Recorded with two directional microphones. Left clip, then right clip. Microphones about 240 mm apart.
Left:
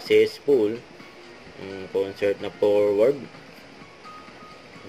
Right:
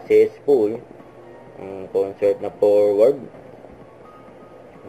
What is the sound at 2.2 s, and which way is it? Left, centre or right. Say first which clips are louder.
Speech: right 6 dB; left.